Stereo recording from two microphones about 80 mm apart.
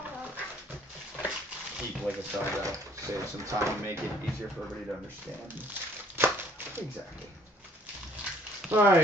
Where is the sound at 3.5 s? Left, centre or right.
Right.